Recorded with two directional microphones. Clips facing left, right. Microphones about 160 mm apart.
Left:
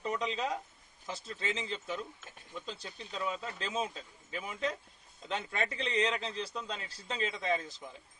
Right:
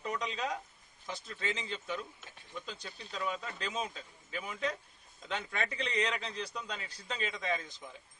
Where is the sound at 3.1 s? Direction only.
5° left (ahead or behind).